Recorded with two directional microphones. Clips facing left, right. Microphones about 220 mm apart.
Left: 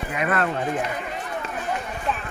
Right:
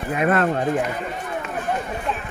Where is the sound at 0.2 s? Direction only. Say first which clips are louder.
Right 4 dB; 40° right (ahead or behind).